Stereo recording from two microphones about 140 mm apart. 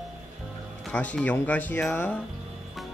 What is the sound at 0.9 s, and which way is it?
A man's voice, 10° left (ahead or behind).